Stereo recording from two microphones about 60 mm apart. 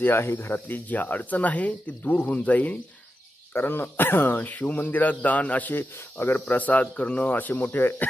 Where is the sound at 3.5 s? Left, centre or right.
Left.